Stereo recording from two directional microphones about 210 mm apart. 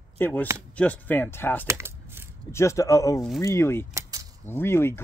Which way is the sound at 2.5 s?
15° left (ahead or behind).